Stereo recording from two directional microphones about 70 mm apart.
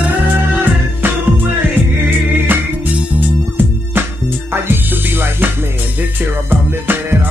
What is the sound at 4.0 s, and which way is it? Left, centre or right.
Music, right.